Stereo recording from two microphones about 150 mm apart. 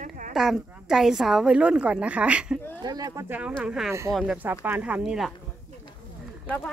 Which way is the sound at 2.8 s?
25° right (ahead or behind).